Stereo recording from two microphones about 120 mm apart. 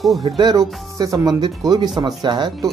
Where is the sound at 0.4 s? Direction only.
35° right (ahead or behind).